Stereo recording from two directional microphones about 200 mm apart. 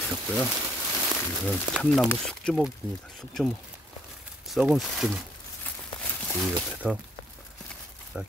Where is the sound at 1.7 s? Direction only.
5° right (ahead or behind).